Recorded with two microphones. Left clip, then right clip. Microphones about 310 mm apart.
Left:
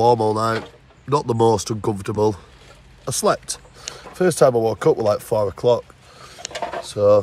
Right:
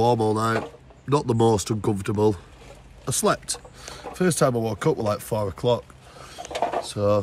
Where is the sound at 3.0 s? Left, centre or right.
Centre.